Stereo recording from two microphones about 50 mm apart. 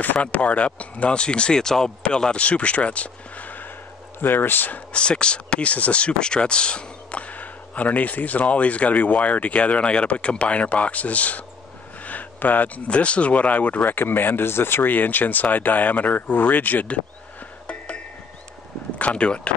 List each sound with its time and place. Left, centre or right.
0.0 s speech: left
4.9 s speech: centre
13.9 s speech: left
17.6 s music: left
18.9 s speech: left